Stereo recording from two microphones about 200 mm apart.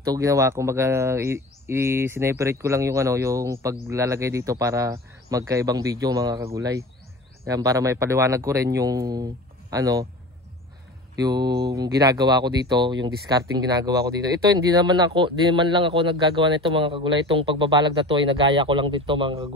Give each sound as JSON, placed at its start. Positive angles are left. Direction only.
{"t": 0.0, "sound": "speech", "side_deg": -15}
{"t": 11.1, "sound": "a man's voice", "side_deg": -20}